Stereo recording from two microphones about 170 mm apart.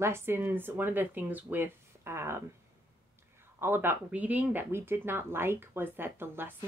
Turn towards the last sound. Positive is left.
turn(degrees=-15)  # may be behind; listen again after turning